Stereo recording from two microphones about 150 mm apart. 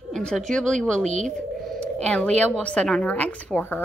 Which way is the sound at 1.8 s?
10° left (ahead or behind).